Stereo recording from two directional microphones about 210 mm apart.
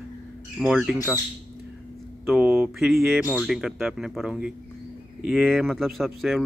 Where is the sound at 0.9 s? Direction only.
15° left (ahead or behind).